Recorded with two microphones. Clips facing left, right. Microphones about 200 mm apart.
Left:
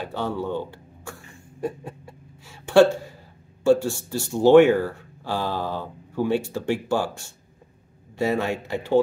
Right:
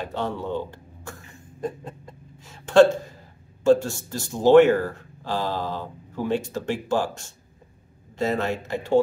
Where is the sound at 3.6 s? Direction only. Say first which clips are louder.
Even; 10° left (ahead or behind).